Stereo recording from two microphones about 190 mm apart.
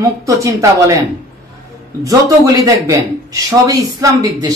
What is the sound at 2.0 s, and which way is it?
A man's voice, 20° right (ahead or behind).